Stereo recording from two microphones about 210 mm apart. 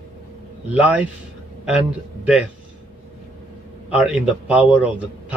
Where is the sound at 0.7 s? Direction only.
5° right (ahead or behind).